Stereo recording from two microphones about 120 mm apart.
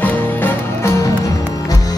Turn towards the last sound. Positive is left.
turn(degrees=15)  # may be behind; listen again after turning